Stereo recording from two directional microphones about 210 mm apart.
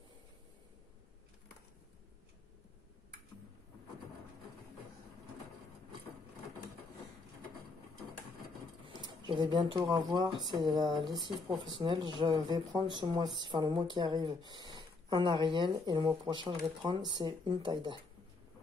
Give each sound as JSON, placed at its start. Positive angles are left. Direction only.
{"t": 8.8, "sound": "speech", "side_deg": -25}